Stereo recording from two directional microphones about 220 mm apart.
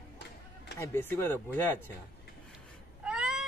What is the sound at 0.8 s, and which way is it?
Speech, 10° left (ahead or behind).